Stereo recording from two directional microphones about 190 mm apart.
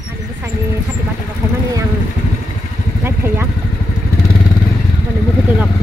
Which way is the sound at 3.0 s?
10° right (ahead or behind).